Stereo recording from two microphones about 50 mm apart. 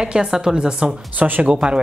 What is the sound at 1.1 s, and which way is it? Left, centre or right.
Speech, right.